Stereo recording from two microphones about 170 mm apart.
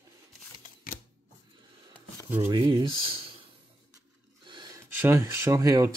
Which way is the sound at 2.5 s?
25° right (ahead or behind).